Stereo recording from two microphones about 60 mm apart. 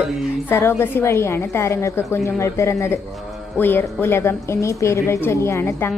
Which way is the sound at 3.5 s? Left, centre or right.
Left.